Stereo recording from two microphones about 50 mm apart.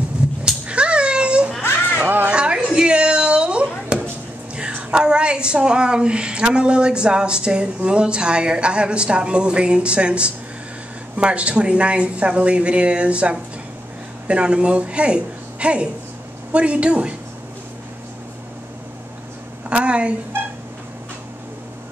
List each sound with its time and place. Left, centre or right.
0.4 s cat: right
2.2 s a sound: right
4.9 s a woman's voice: centre
19.7 s a woman's voice: right